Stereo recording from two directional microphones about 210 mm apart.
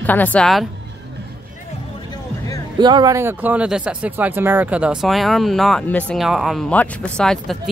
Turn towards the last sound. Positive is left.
turn(degrees=5)  # may be behind; listen again after turning